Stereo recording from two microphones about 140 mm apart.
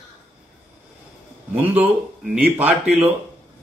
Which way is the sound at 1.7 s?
10° right (ahead or behind).